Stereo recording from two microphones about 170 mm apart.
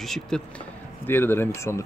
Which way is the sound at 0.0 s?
Centre (ahead or behind).